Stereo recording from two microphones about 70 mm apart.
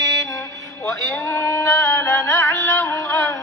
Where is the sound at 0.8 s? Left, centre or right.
Left.